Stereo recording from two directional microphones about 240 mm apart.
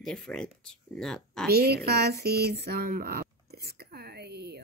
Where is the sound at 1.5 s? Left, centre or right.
Right.